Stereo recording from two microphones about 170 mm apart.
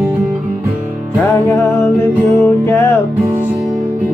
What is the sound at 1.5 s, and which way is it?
Music, 20° left (ahead or behind).